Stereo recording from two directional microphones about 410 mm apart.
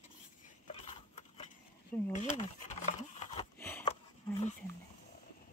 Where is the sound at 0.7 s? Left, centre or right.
Centre.